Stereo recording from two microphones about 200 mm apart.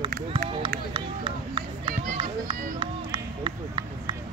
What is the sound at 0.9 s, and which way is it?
Run, 25° right (ahead or behind).